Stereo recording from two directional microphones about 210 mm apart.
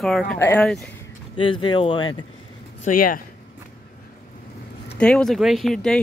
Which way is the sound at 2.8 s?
40° left (ahead or behind).